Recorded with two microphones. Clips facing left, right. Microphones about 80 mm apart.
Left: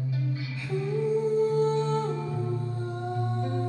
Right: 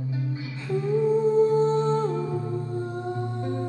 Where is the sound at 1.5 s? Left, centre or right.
Right.